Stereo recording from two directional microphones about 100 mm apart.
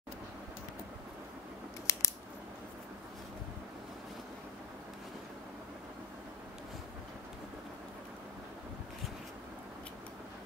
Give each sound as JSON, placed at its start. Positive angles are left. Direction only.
{"t": 1.9, "sound": "scissors", "side_deg": 30}